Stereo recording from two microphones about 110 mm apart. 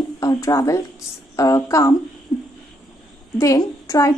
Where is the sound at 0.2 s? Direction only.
30° left (ahead or behind).